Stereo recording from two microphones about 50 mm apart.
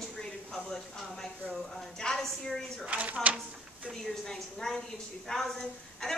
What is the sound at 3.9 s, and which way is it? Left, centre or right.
A woman's voice, centre.